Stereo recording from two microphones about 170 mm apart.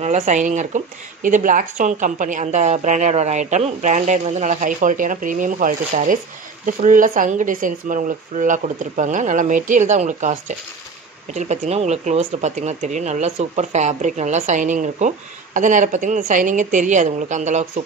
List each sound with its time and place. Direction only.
0.0 s speech: 45° right (ahead or behind)
11.3 s speech: 45° right (ahead or behind)